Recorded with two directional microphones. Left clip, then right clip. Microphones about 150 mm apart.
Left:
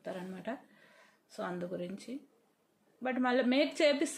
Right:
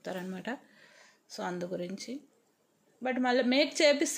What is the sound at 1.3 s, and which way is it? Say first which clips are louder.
A woman's voice: right 3 dB; 30° right (ahead or behind).